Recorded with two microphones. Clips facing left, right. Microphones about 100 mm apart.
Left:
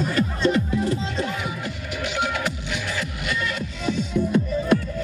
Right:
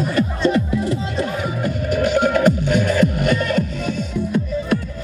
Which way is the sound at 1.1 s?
45° right (ahead or behind).